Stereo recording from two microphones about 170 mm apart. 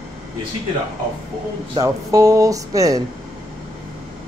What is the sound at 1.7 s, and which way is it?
Speech, 20° right (ahead or behind).